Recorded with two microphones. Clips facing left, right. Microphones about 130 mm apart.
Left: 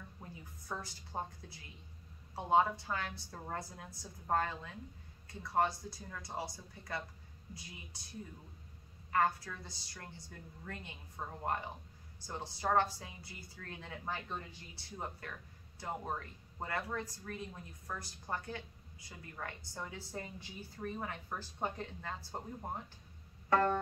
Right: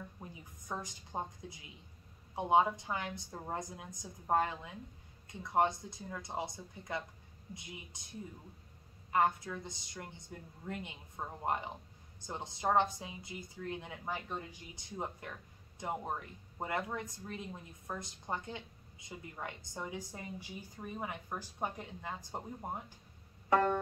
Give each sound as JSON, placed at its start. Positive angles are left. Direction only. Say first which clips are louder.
{"t": 0.2, "sound": "a woman's voice", "louder": "right 1 dB", "side_deg": -15}
{"t": 9.1, "sound": "a woman's voice", "louder": "right 2 dB", "side_deg": -20}
{"t": 23.5, "sound": "music", "louder": "right 1 dB", "side_deg": -15}